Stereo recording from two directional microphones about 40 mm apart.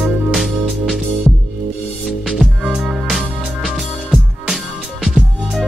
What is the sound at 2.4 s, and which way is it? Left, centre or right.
Music, centre.